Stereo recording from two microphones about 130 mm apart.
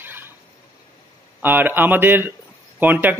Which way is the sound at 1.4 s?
15° right (ahead or behind).